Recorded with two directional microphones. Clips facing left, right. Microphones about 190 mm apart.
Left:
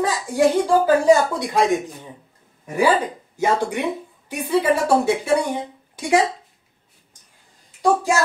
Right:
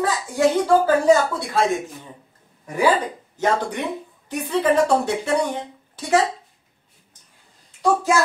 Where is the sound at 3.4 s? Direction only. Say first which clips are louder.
Left 1 dB; 10° left (ahead or behind).